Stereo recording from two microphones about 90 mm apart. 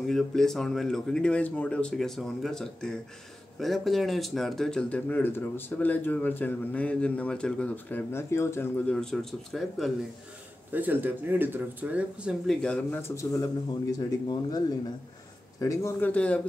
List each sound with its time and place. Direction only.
0.1 s speech: 5° left (ahead or behind); by 8.8 s 30° left (ahead or behind)
8.8 s speech: 5° left (ahead or behind)
10.7 s speech: 20° right (ahead or behind)
12.4 s speech: 10° left (ahead or behind)
12.9 s speech: 30° left (ahead or behind); by 14.6 s 45° left (ahead or behind)
15.6 s speech: 35° left (ahead or behind)
16.0 s speech: 15° left (ahead or behind)